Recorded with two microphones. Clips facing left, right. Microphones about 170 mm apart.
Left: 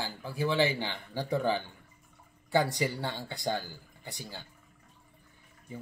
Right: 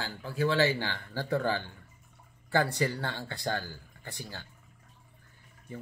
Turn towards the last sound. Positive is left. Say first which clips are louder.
# even
turn(degrees=15)  # may be behind; listen again after turning